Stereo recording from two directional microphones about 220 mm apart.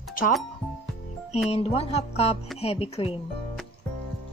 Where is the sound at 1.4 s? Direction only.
25° left (ahead or behind).